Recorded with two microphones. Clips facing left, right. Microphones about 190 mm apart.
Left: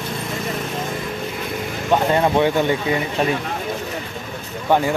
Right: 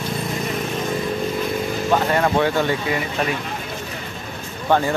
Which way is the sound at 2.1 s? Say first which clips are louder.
Left 2 dB; 20° left (ahead or behind).